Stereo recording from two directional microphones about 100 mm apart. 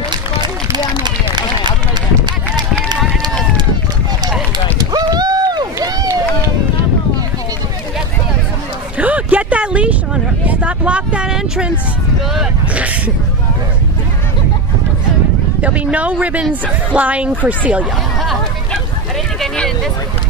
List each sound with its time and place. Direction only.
0.7 s run: 45° right (ahead or behind)
4.7 s run: 40° right (ahead or behind)
8.9 s a sound: 15° right (ahead or behind)
10.4 s speech: 15° right (ahead or behind)
15.6 s speech: 15° right (ahead or behind)
18.2 s hubbub: centre (ahead or behind)
19.4 s a sound: 5° left (ahead or behind)